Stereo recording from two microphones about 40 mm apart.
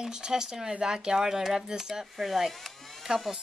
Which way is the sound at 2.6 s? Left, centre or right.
Centre.